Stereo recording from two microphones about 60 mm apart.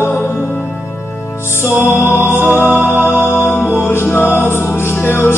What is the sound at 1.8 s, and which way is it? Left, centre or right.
Music, left.